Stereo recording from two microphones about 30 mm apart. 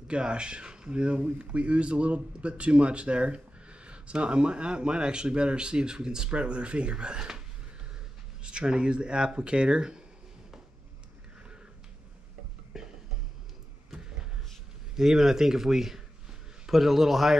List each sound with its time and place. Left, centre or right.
0.1 s speech: right
6.3 s speech: right
12.7 s a sound: centre
15.0 s speech: centre